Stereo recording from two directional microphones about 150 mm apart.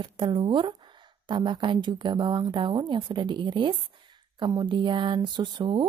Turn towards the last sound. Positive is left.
turn(degrees=-30)  # may be behind; listen again after turning